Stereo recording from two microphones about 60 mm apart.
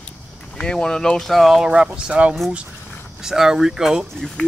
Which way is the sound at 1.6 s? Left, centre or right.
Centre.